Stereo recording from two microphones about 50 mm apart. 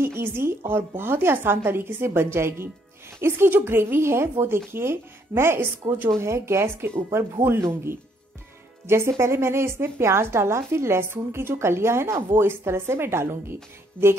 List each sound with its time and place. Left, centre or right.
0.0 s a woman's voice: right